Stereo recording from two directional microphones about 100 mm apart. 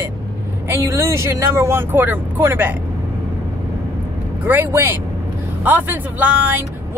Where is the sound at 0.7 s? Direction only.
30° right (ahead or behind).